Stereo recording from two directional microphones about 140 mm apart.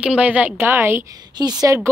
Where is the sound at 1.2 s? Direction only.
30° right (ahead or behind).